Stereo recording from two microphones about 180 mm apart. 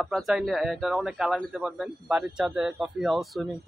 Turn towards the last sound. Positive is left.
turn(degrees=0)  # may be behind; listen again after turning